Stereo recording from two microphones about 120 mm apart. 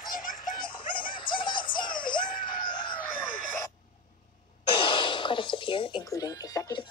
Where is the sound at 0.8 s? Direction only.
45° left (ahead or behind).